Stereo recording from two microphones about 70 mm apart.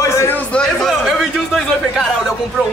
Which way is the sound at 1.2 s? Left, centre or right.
Centre.